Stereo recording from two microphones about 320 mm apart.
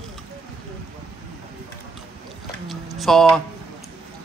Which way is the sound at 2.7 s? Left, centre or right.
Centre.